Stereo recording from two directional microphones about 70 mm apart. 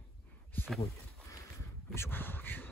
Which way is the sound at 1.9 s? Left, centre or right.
Left.